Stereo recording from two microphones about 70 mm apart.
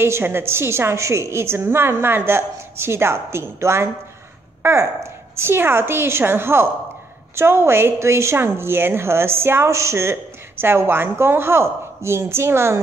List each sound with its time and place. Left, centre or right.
0.0 s a woman's voice: right
5.4 s a woman's voice: right